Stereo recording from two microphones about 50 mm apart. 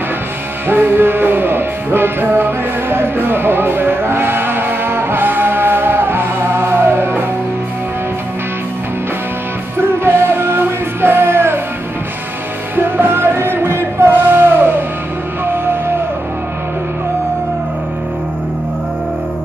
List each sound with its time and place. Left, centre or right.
0.7 s music: right
9.8 s music: right
12.7 s music: right